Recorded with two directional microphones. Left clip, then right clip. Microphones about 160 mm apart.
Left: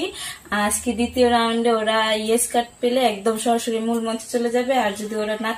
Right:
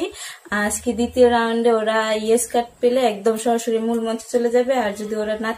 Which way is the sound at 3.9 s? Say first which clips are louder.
Right 2 dB; 25° right (ahead or behind).